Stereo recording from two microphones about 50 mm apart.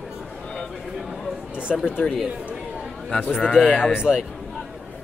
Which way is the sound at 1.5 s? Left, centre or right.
Right.